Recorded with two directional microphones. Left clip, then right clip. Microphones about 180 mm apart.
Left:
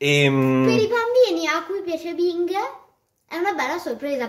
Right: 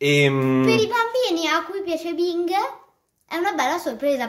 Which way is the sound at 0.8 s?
55° right (ahead or behind).